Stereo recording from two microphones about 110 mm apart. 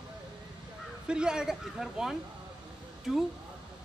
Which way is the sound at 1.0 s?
5° right (ahead or behind).